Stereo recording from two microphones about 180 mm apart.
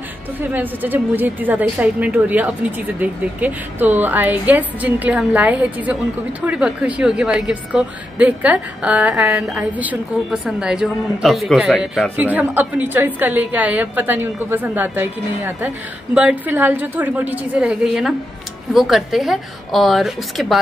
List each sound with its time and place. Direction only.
0.4 s a woman's voice: 10° right (ahead or behind)